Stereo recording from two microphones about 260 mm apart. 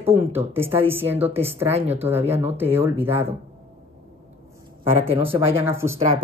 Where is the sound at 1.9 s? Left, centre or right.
Centre.